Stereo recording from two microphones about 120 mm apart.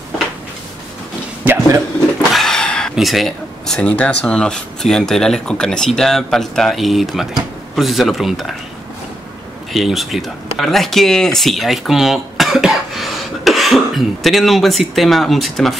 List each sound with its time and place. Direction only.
1.4 s a sound: 20° right (ahead or behind)
2.3 s speech: 5° left (ahead or behind)
9.7 s speech: centre (ahead or behind)